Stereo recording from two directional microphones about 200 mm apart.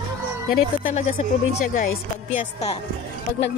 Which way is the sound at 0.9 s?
40° left (ahead or behind).